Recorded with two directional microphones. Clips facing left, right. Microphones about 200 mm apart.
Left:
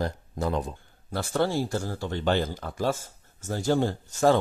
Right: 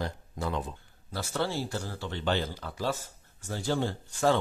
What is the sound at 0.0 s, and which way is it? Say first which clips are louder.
Speech: left 5 dB; 40° left (ahead or behind).